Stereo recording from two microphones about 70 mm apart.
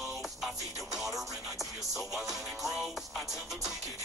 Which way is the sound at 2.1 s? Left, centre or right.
Centre.